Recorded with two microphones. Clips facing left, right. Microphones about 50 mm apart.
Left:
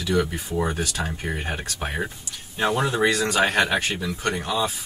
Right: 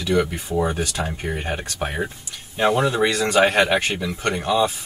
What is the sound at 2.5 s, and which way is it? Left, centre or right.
Speech, right.